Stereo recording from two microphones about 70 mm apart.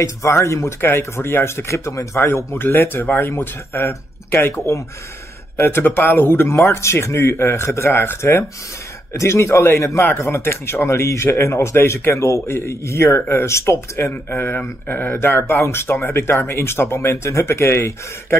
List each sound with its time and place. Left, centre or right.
0.0 s a man's voice: left
5.6 s a man's voice: left